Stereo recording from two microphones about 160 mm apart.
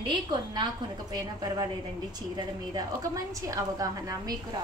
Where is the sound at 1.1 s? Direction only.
25° right (ahead or behind).